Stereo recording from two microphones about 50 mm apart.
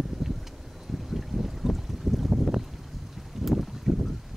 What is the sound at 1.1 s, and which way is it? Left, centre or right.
Boat, centre.